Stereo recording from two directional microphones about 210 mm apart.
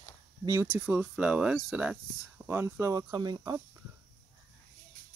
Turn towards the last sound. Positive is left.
turn(degrees=-20)  # may be behind; listen again after turning